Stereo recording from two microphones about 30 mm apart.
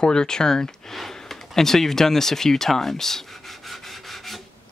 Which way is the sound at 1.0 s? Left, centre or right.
Centre.